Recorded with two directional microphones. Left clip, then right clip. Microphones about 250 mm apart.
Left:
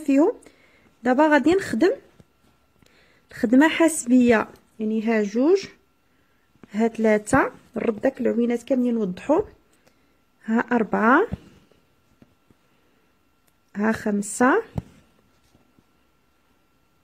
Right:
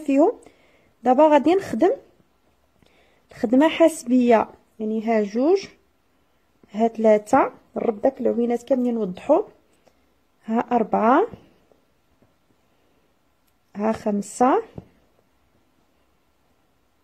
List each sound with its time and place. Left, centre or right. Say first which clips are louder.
0.0 s speech: right 1 dB; centre
10.4 s speech: right 1 dB; centre
13.7 s speech: right 1 dB; centre